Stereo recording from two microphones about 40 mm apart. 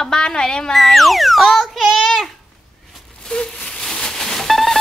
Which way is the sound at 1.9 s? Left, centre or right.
Centre.